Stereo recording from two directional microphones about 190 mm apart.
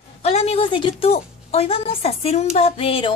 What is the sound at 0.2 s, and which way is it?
A woman's voice, 35° left (ahead or behind).